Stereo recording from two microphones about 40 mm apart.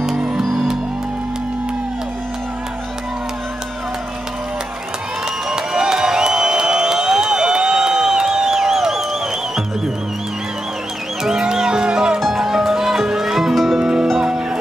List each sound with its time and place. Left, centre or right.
5.5 s music: centre
11.2 s music: centre
12.2 s music: centre
13.7 s music: centre